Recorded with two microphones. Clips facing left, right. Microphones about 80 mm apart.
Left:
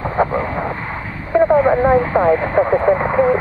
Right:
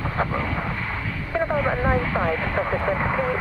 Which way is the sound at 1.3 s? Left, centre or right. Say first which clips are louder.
Left 11 dB; left.